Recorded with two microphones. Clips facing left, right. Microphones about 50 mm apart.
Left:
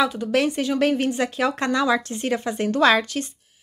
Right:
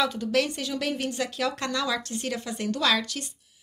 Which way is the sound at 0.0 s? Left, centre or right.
Centre.